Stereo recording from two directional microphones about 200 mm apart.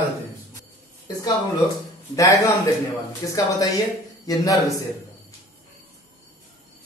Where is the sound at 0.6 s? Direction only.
20° left (ahead or behind).